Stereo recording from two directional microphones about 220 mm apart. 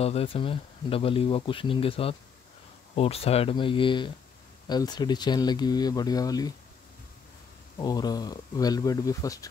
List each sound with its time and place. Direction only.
0.0 s speech: 25° left (ahead or behind)
7.7 s speech: 20° left (ahead or behind)